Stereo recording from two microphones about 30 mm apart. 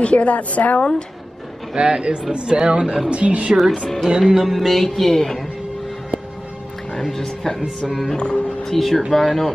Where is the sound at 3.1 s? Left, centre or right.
Right.